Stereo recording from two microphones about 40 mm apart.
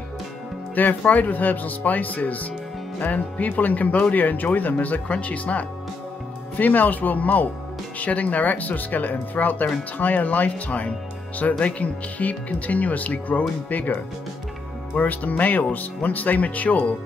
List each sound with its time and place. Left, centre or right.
0.7 s speech: left
5.0 s speech: left
15.0 s speech: left